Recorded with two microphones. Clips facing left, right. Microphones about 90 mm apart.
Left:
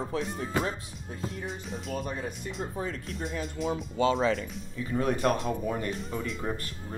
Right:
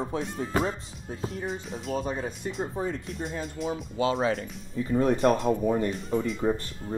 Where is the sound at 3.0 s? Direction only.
Centre (ahead or behind).